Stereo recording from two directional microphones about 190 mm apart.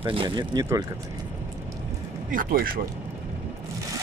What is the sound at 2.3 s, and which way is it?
Speech, 50° right (ahead or behind).